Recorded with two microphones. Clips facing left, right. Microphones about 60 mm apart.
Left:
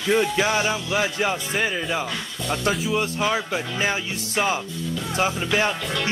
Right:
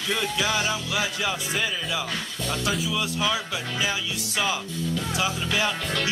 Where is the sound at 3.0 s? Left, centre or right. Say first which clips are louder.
Left 3 dB; left.